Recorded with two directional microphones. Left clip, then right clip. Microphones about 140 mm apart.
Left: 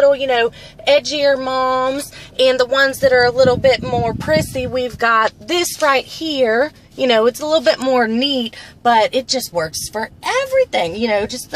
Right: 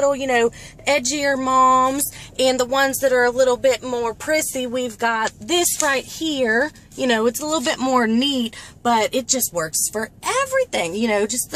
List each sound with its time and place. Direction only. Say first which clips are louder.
0.3 s speech: left 2 dB; 10° right (ahead or behind)
4.0 s speech: left 4 dB; 25° right (ahead or behind)
5.0 s speech: left 8 dB; 10° right (ahead or behind)